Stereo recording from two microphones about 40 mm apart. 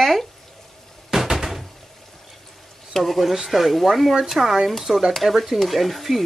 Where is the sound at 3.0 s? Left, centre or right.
Centre.